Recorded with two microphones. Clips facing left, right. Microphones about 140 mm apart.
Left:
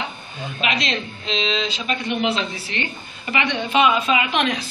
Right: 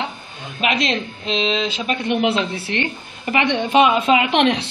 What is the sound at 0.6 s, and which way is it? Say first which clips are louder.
Speech: right 4 dB; 50° right (ahead or behind).